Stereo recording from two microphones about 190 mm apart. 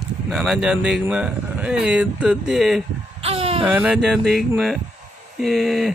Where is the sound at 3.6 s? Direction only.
10° right (ahead or behind).